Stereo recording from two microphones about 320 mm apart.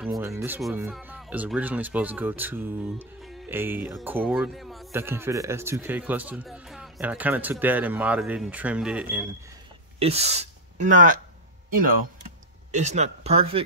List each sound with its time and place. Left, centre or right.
0.0 s speech: centre
9.9 s speech: centre
12.7 s speech: right